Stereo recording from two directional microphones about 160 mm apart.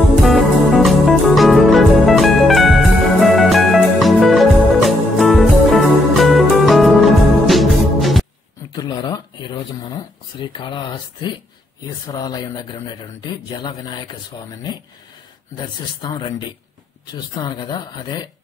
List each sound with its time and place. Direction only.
0.2 s music: centre (ahead or behind)
8.7 s a sound: 25° left (ahead or behind)
12.1 s a man's voice: 25° left (ahead or behind)